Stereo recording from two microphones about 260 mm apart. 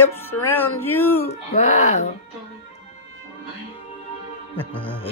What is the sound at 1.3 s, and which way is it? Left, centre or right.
Speech, left.